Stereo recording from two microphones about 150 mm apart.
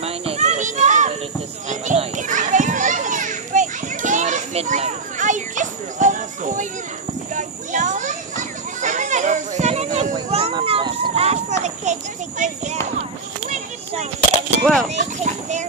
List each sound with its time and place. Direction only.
0.0 s children playing: 40° right (ahead or behind)
10.5 s children playing: 35° right (ahead or behind); by 12.7 s 55° right (ahead or behind)
14.6 s speech: 5° left (ahead or behind)
15.0 s clip-clop: 50° right (ahead or behind)